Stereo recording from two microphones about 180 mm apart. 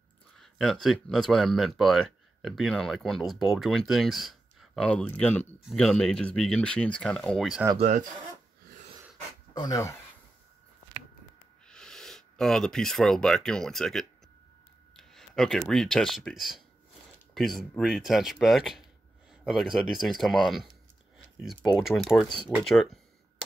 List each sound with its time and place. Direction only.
0.4 s speech: centre (ahead or behind)
9.5 s speech: 20° left (ahead or behind)
11.6 s speech: 5° left (ahead or behind)
21.7 s speech: centre (ahead or behind)